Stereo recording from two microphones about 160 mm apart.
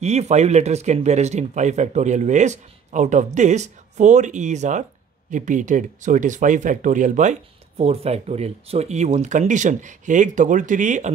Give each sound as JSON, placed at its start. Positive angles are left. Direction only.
{"t": 0.0, "sound": "speech", "side_deg": -45}